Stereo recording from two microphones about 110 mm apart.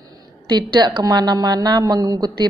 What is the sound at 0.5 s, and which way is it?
A woman's voice, 40° right (ahead or behind).